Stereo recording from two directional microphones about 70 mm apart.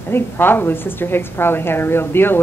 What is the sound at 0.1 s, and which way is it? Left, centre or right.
A woman's voice, left.